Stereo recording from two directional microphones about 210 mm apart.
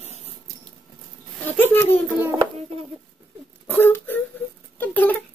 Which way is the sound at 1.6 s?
10° left (ahead or behind).